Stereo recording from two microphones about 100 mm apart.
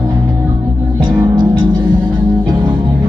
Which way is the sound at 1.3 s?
45° right (ahead or behind).